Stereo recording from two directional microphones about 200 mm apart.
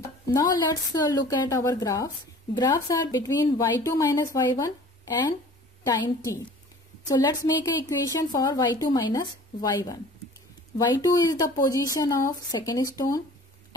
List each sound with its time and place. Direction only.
0.3 s a woman's voice: 20° left (ahead or behind)